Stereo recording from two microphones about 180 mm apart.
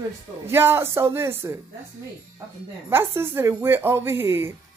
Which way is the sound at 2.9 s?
15° right (ahead or behind).